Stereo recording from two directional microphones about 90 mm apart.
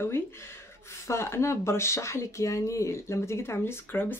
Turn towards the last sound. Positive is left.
turn(degrees=25)  # may be behind; listen again after turning